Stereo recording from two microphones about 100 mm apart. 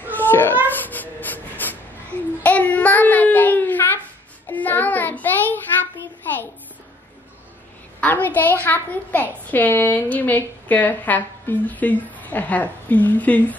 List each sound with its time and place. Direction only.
0.1 s cat: 20° left (ahead or behind)
0.8 s snort: 15° left (ahead or behind)
2.4 s a sound: 15° left (ahead or behind)
4.5 s child singing: 20° left (ahead or behind)
8.0 s a sound: 15° left (ahead or behind)
9.5 s a woman's voice: 20° left (ahead or behind)